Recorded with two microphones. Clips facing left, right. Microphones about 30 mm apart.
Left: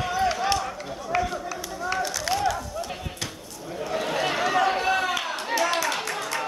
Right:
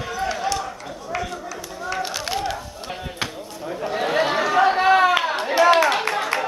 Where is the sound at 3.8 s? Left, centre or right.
Right.